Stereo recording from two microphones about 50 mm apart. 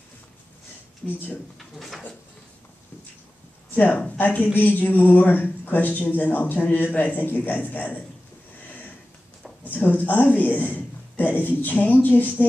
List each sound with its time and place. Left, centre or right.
1.0 s a man's voice: left
1.6 s speech: centre
3.7 s a man's voice: left
9.7 s a man's voice: left